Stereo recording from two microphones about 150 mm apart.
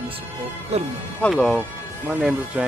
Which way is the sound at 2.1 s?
5° right (ahead or behind).